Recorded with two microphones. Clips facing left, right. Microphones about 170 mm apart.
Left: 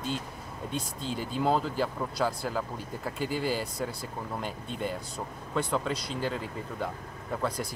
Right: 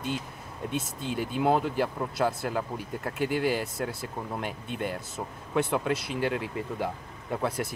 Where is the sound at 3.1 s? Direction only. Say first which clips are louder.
Right 4 dB; 65° right (ahead or behind).